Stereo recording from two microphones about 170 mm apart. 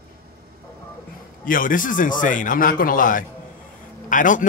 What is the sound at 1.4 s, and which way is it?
Speech, 55° left (ahead or behind).